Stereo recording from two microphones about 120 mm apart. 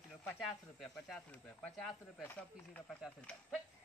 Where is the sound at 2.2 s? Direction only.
15° left (ahead or behind).